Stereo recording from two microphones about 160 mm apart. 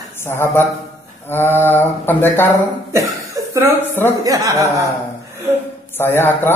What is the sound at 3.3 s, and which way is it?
Chuckle, 20° right (ahead or behind).